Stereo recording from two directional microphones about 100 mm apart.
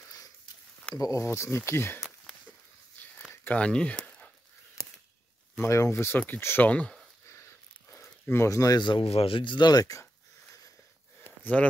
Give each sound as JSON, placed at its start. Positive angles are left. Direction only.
{"t": 0.9, "sound": "speech", "side_deg": 35}
{"t": 3.3, "sound": "a sound", "side_deg": 15}
{"t": 5.6, "sound": "speech", "side_deg": 30}
{"t": 6.1, "sound": "speech", "side_deg": 15}
{"t": 7.9, "sound": "speech", "side_deg": 25}
{"t": 9.0, "sound": "speech", "side_deg": 75}
{"t": 11.6, "sound": "speech", "side_deg": 10}